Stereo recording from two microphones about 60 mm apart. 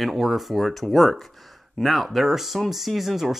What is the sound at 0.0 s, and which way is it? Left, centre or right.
Speech, centre.